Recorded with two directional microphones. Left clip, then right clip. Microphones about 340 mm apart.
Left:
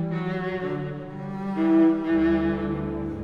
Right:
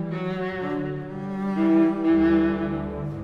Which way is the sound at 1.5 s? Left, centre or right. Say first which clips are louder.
Left 1 dB; right.